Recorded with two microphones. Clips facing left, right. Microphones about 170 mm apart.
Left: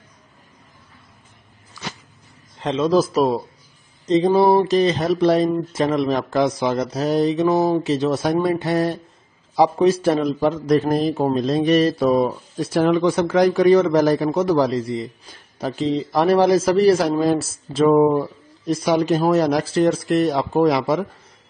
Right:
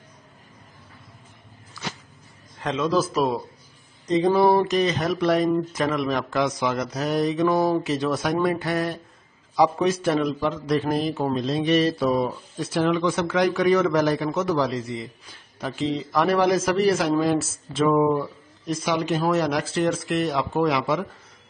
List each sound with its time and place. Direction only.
1.8 s a sound: 15° left (ahead or behind)
2.6 s speech: 30° left (ahead or behind)
2.9 s a man's voice: 40° left (ahead or behind)